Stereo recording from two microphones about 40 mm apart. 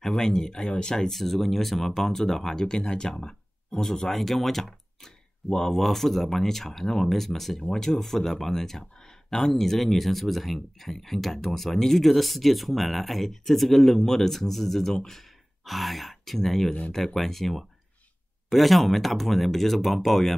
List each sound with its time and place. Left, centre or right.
0.0 s speech: centre
4.1 s speech: centre